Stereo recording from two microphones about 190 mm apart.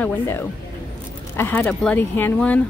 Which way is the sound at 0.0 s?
10° left (ahead or behind).